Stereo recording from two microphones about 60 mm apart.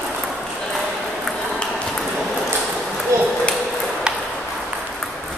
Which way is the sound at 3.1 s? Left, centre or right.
Right.